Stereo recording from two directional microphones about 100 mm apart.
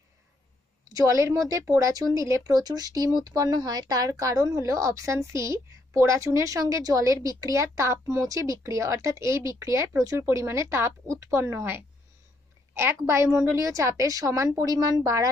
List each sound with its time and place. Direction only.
0.9 s speech: 30° right (ahead or behind)